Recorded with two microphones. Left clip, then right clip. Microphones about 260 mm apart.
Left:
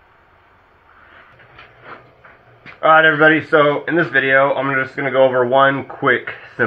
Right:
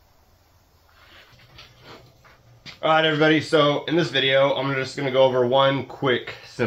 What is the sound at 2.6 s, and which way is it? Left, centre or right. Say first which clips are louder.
Speech: left 8 dB; right.